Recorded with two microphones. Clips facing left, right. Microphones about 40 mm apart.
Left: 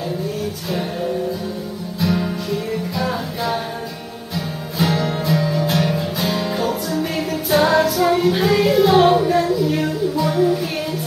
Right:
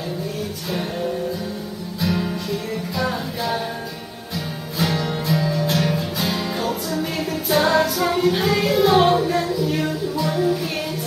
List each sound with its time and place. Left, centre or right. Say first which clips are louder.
2.0 s music: left 2 dB; centre
4.7 s music: left 3 dB; centre